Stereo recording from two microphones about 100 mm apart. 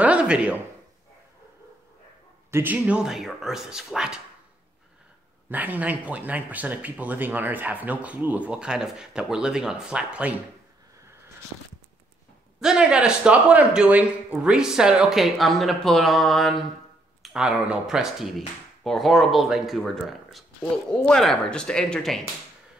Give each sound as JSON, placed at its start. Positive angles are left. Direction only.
{"t": 0.0, "sound": "a sound", "side_deg": -10}
{"t": 2.5, "sound": "speech", "side_deg": -15}
{"t": 5.5, "sound": "speech", "side_deg": -15}
{"t": 12.5, "sound": "speech", "side_deg": -5}